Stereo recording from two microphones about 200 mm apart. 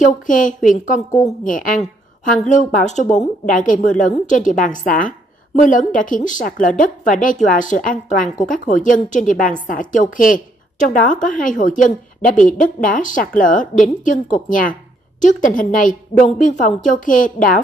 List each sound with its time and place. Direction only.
0.0 s a woman's voice: 40° left (ahead or behind)